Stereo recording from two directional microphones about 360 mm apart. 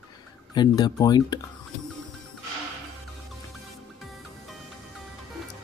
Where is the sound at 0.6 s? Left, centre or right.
Centre.